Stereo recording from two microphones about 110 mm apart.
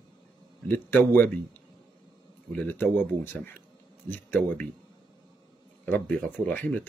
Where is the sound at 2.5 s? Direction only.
15° left (ahead or behind).